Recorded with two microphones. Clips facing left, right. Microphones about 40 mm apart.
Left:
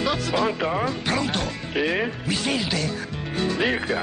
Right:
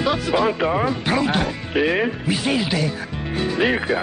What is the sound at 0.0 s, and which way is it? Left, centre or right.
Music, centre.